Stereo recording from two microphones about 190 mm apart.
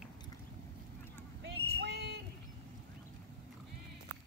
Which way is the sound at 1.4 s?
60° right (ahead or behind).